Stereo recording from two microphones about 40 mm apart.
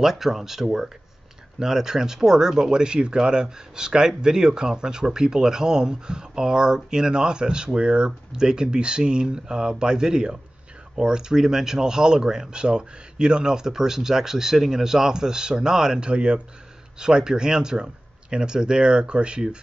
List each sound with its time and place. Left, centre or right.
0.0 s speech: centre
16.1 s speech: right
17.0 s speech: centre